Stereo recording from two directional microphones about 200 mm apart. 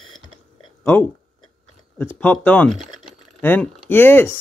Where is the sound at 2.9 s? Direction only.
5° left (ahead or behind).